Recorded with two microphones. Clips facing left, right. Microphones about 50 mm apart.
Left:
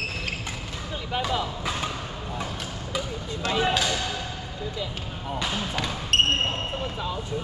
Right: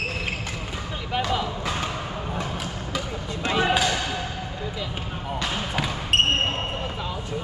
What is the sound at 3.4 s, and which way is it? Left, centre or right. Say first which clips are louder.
Basketball bounce: right 2 dB; right.